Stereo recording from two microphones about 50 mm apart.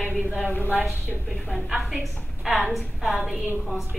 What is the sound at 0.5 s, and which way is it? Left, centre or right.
Speech, left.